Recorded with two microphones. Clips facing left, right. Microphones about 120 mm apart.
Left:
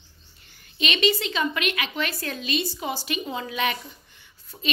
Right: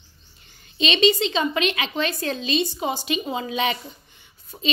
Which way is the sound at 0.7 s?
25° right (ahead or behind).